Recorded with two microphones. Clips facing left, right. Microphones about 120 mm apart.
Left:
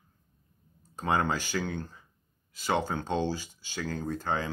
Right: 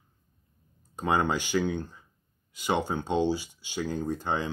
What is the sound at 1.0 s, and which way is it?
Speech, 15° right (ahead or behind).